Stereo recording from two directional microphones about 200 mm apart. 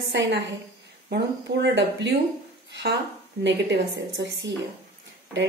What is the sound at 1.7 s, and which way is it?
A woman's voice, 65° right (ahead or behind).